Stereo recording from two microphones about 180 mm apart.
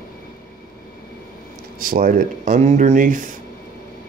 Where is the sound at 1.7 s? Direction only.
50° right (ahead or behind).